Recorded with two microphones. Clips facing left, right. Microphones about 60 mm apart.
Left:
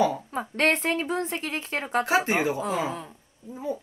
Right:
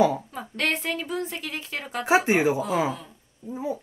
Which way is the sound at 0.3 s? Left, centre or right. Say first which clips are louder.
Left 4 dB; left.